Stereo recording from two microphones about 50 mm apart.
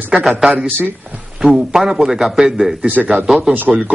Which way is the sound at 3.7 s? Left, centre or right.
Centre.